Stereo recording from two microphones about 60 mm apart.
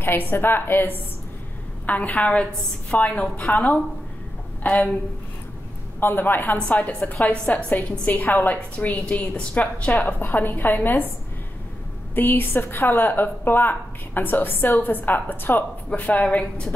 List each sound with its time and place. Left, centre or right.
0.0 s a woman's voice: left
1.9 s a woman's voice: left
5.9 s a woman's voice: left
12.2 s a woman's voice: left; by 16.7 s centre